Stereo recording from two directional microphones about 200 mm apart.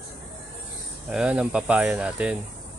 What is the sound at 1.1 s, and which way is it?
Speech, 5° right (ahead or behind).